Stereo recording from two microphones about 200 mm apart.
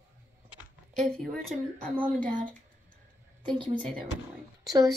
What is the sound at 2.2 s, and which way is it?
Speech, 40° right (ahead or behind).